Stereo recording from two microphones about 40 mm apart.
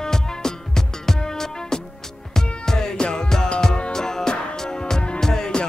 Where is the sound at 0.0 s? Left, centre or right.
Centre.